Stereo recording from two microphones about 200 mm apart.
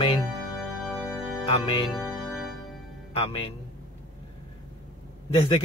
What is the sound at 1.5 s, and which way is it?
Speech, 25° left (ahead or behind).